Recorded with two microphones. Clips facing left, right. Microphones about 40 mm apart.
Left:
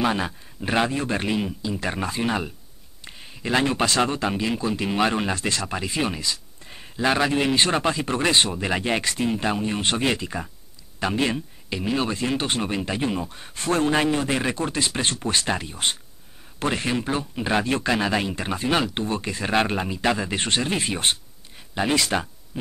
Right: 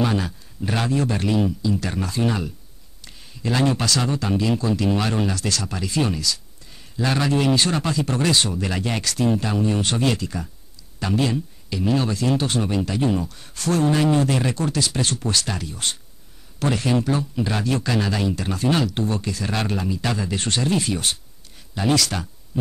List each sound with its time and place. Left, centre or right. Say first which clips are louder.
0.0 s speech: right 1 dB; left
11.8 s speech: right 3 dB; centre
12.1 s speech: right 3 dB; left